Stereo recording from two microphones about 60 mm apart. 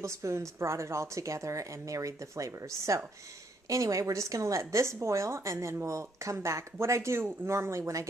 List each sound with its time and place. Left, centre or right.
0.0 s a woman's voice: right